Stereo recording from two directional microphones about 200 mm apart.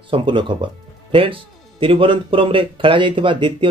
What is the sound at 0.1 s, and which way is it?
Speech, 25° right (ahead or behind).